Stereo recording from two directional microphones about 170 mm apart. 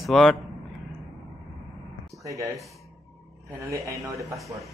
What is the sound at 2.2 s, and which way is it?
Speech, 20° right (ahead or behind).